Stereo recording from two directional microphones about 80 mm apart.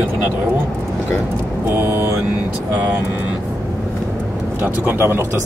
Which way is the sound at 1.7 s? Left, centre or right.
Right.